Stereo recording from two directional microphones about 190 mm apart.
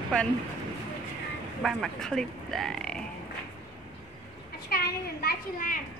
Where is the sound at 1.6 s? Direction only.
Centre (ahead or behind).